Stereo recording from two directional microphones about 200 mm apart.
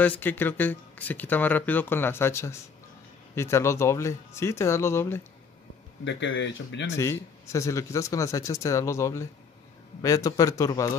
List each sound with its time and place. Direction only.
0.0 s speech: 10° left (ahead or behind)
6.0 s speech: 70° left (ahead or behind)
7.0 s speech: 15° left (ahead or behind)